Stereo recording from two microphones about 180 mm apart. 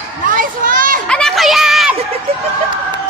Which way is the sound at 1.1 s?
Centre (ahead or behind).